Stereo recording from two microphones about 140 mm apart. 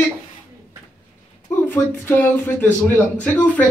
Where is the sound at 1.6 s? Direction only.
15° left (ahead or behind).